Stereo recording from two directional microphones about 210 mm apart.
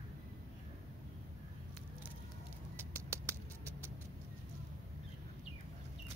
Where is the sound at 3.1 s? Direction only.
15° right (ahead or behind).